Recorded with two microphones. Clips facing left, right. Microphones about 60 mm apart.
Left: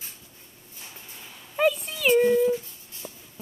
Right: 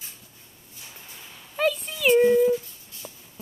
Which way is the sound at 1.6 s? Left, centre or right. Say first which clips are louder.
Left 2 dB; centre.